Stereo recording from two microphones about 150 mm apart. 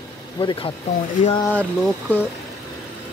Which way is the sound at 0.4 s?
30° left (ahead or behind).